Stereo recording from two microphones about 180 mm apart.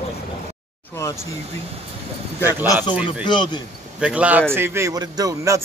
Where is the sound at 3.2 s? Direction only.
25° left (ahead or behind).